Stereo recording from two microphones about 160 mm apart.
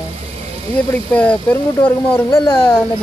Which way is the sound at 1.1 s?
10° left (ahead or behind).